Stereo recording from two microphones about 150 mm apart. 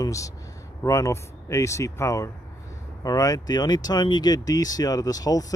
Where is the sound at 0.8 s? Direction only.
20° left (ahead or behind).